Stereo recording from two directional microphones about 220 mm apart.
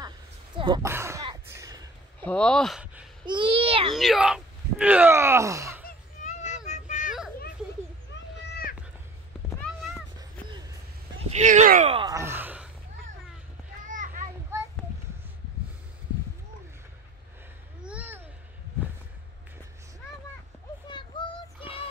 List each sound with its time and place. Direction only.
0.6 s speech: 25° right (ahead or behind)
0.8 s throat clearing: 10° right (ahead or behind)
2.2 s speech: 5° left (ahead or behind)
3.3 s a child's voice: 25° right (ahead or behind)
3.9 s speech: centre (ahead or behind)
5.9 s a sound: 35° left (ahead or behind)
9.6 s cat: centre (ahead or behind)
11.2 s a sound: 30° right (ahead or behind); by 12.6 s 10° right (ahead or behind)
13.8 s children playing: 35° right (ahead or behind)
17.8 s a sound: 5° right (ahead or behind)
20.9 s child singing: 20° left (ahead or behind)